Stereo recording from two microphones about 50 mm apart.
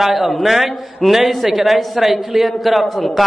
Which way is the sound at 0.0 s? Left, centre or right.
Centre.